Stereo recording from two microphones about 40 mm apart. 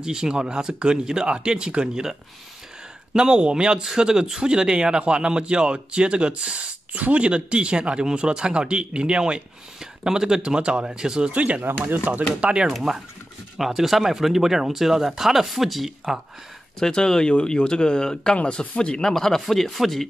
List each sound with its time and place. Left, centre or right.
0.0 s speech: centre
3.1 s speech: right
9.8 s speech: centre
11.3 s speech: right
11.6 s speech: right
12.4 s speech: right
12.9 s speech: centre
16.8 s speech: centre
19.1 s speech: centre